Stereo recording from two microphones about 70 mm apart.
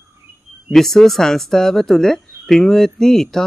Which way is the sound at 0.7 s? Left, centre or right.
Centre.